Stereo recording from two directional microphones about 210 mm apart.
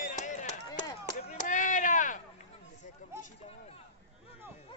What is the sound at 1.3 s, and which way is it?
Chop, 35° left (ahead or behind).